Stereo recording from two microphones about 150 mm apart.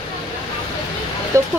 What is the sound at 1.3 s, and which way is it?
Speech, 20° right (ahead or behind).